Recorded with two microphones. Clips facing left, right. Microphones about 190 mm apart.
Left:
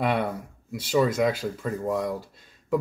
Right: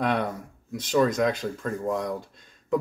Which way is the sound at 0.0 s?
5° left (ahead or behind).